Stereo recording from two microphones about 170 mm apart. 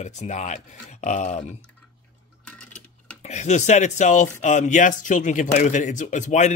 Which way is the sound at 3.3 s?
45° left (ahead or behind).